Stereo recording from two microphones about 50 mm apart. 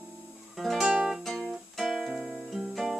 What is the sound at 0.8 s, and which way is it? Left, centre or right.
Music, centre.